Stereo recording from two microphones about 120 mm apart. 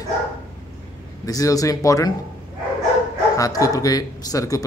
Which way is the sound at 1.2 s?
30° left (ahead or behind).